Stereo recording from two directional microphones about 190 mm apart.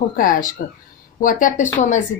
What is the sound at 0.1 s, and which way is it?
Speech, 45° left (ahead or behind).